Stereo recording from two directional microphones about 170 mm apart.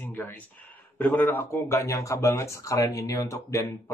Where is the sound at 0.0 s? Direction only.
10° left (ahead or behind).